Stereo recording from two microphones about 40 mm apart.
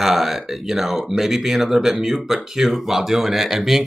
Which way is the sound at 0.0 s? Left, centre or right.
Centre.